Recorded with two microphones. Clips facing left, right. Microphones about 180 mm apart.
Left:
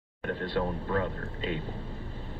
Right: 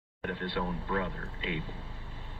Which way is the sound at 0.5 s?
40° left (ahead or behind).